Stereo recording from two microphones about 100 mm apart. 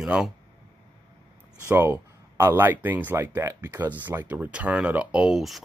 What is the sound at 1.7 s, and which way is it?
Speech, 20° right (ahead or behind).